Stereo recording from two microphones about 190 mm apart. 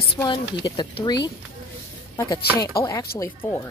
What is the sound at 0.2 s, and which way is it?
Speech, 25° left (ahead or behind).